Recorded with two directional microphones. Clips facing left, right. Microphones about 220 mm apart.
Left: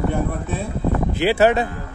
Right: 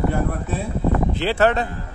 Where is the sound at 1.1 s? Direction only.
10° left (ahead or behind).